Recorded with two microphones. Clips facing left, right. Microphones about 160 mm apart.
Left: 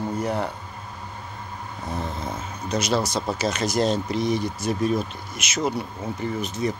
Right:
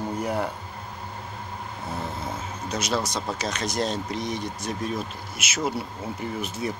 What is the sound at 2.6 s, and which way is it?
Speech, centre (ahead or behind).